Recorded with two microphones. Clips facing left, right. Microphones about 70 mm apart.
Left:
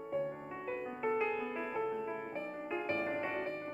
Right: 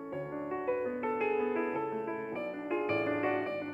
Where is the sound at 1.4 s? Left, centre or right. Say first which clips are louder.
Right 6 dB; centre.